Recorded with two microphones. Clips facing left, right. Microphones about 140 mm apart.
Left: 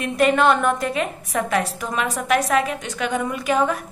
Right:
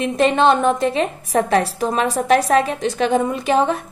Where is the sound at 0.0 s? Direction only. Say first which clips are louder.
Right 2 dB; 25° right (ahead or behind).